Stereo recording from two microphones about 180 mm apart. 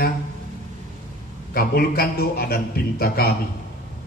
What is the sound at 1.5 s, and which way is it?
A man's voice, 55° left (ahead or behind).